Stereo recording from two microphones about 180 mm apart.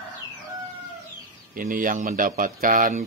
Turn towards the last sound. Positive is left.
turn(degrees=-45)  # may be behind; listen again after turning